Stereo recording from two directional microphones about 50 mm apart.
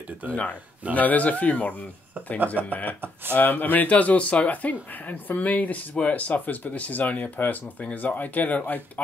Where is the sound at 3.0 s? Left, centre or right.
Right.